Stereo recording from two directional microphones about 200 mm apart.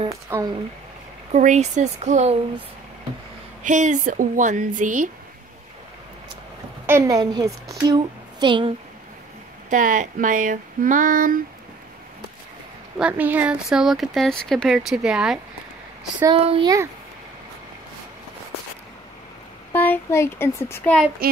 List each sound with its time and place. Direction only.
0.3 s speech: 15° right (ahead or behind)
1.3 s a sound: 35° right (ahead or behind)
3.6 s a sound: 40° right (ahead or behind)
6.9 s a woman's voice: 15° right (ahead or behind)
9.7 s a sound: 40° right (ahead or behind)
13.0 s speech: 10° right (ahead or behind)
16.3 s a woman's voice: 25° right (ahead or behind)
19.7 s speech: 10° left (ahead or behind)
21.2 s a child's voice: 50° right (ahead or behind)